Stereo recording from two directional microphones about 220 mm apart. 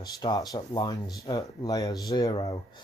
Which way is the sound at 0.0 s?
20° left (ahead or behind).